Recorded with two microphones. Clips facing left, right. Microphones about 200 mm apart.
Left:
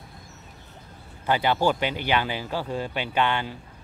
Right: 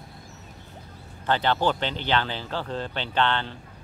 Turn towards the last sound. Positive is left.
turn(degrees=10)  # may be behind; listen again after turning